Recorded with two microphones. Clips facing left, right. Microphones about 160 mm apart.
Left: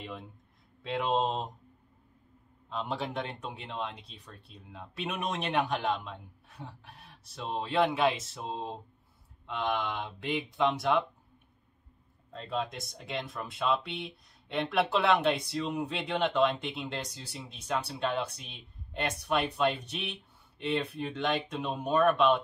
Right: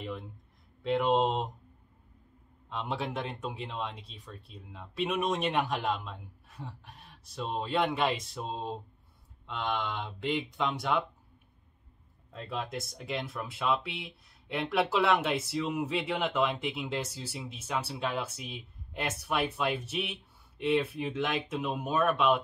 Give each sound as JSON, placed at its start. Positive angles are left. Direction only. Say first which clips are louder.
{"t": 0.8, "sound": "speech", "louder": "right 3 dB", "side_deg": 0}
{"t": 2.7, "sound": "speech", "louder": "even", "side_deg": 0}
{"t": 12.3, "sound": "speech", "louder": "left 2 dB", "side_deg": -5}